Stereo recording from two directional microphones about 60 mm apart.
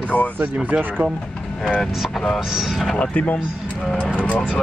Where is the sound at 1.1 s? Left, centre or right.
Centre.